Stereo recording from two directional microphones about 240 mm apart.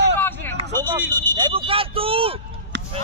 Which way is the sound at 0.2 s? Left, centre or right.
Centre.